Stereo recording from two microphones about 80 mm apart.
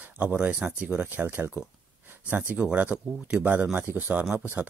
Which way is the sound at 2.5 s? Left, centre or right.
Centre.